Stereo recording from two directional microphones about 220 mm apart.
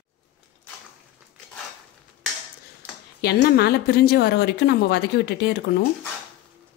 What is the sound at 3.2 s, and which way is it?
A woman's voice, 45° left (ahead or behind).